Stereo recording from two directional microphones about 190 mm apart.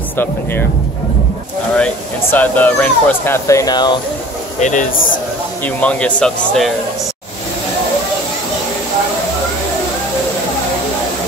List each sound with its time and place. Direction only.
2.3 s speech: 10° left (ahead or behind)
4.6 s speech: 40° left (ahead or behind)
5.8 s speech: 5° left (ahead or behind)